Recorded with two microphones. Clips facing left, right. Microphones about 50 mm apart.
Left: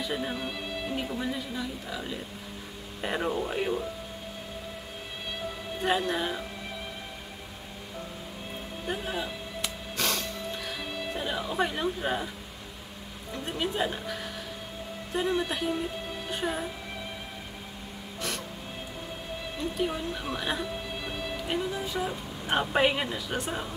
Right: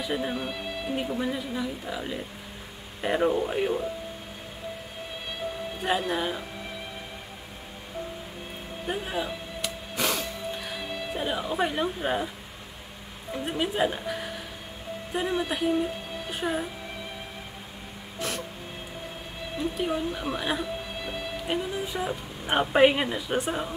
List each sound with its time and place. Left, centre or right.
0.0 s speech: centre
0.9 s speech: centre
5.9 s speech: centre
8.8 s speech: centre
9.9 s music: centre
13.3 s speech: centre
19.9 s speech: centre